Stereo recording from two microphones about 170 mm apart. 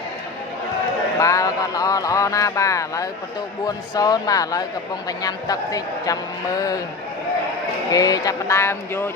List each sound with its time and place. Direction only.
1.2 s a sound: 20° left (ahead or behind)
3.6 s a woman's voice: 20° left (ahead or behind)
7.9 s a woman's voice: 20° left (ahead or behind)